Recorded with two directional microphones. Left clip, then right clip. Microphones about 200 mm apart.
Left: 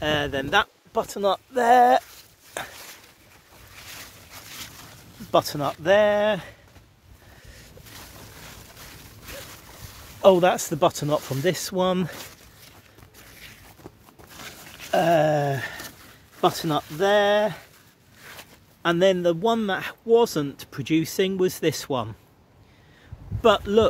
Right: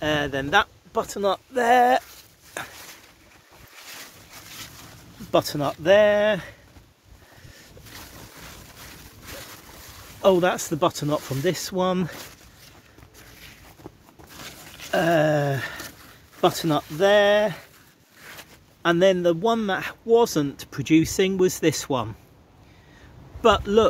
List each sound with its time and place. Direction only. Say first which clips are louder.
0.0 s speech: even; 10° left (ahead or behind)
2.6 s a sound: left 1 dB; 15° left (ahead or behind)
4.5 s boat: left 1 dB; 30° left (ahead or behind)
5.3 s speech: even; centre (ahead or behind)
10.2 s speech: left 2 dB; 20° left (ahead or behind)
13.3 s boat: left 2 dB; 25° left (ahead or behind)
14.3 s a sound: even; centre (ahead or behind)
16.3 s speech: right 1 dB; 5° right (ahead or behind)
23.4 s speech: even; 5° left (ahead or behind)